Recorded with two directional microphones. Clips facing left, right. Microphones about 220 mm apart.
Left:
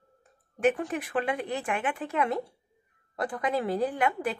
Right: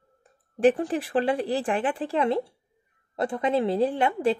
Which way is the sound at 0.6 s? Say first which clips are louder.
Right 5 dB; 30° right (ahead or behind).